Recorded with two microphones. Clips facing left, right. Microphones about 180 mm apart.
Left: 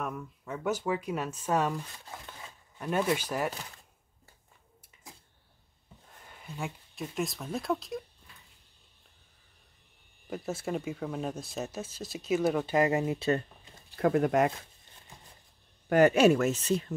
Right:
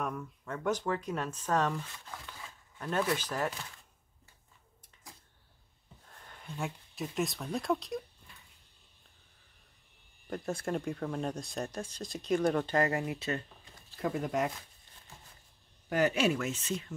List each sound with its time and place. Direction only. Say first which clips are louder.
0.0 s speech: even; 5° left (ahead or behind)
6.1 s speech: even; 5° left (ahead or behind)
10.3 s speech: left 1 dB; centre (ahead or behind); by 13.4 s 30° left (ahead or behind)
13.9 s speech: left 7 dB; 65° left (ahead or behind)
15.9 s speech: left 7 dB; 55° left (ahead or behind); by 16.8 s 40° left (ahead or behind)